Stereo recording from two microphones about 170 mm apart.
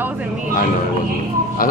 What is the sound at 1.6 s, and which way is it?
Speech, 55° left (ahead or behind).